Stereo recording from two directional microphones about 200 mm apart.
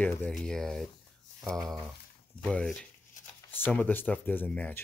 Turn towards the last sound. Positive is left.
turn(degrees=10)  # may be behind; listen again after turning